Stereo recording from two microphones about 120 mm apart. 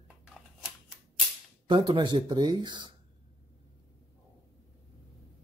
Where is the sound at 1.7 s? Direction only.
40° right (ahead or behind).